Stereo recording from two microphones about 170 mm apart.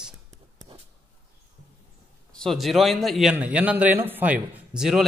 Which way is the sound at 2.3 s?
Centre (ahead or behind).